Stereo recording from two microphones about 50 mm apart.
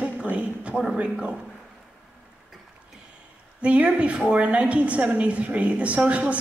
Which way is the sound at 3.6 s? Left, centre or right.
Right.